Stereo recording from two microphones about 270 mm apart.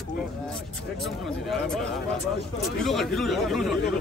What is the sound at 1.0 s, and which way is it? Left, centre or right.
Speech, centre.